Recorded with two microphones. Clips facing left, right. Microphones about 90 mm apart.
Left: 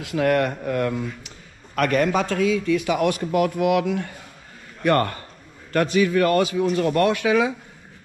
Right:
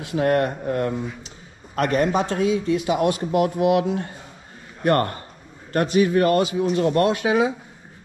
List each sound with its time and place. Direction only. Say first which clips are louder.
0.0 s a man's voice: even; 30° right (ahead or behind)